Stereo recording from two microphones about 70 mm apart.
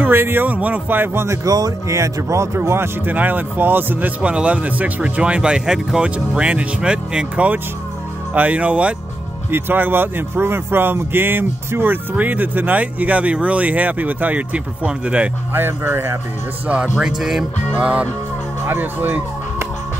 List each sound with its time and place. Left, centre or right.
0.0 s speech: right
1.2 s speech: right
3.1 s speech: right
4.2 s speech: centre
9.5 s speech: right
15.5 s speech: right
16.6 s speech: centre
18.7 s speech: right